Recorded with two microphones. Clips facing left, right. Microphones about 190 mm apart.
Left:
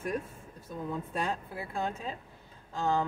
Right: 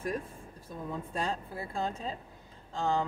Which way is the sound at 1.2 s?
30° right (ahead or behind).